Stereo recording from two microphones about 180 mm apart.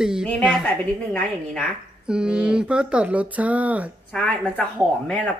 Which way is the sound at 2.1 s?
5° right (ahead or behind).